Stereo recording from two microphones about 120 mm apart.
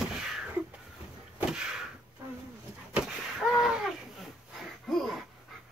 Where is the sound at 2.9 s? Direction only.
5° right (ahead or behind).